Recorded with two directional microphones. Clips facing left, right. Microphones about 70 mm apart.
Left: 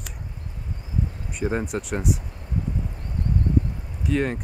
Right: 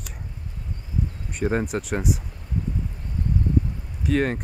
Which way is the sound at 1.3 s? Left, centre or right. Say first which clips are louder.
Right 3 dB; centre.